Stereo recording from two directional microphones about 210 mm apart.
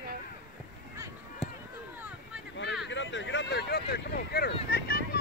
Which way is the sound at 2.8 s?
60° left (ahead or behind).